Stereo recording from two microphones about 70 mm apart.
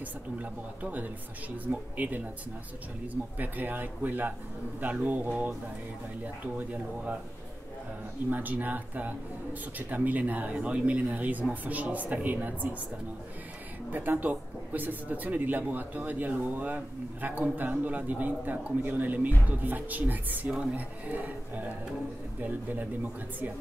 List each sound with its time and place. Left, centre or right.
0.4 s speech: right
3.3 s speech: right
8.3 s speech: right
13.9 s speech: right